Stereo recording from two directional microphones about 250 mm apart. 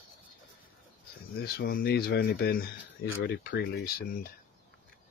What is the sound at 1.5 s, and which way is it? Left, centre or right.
Speech, left.